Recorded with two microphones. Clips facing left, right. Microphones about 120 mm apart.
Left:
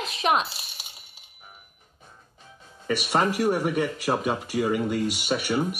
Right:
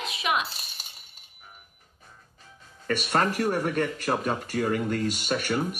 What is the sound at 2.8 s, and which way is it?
Speech, 10° left (ahead or behind).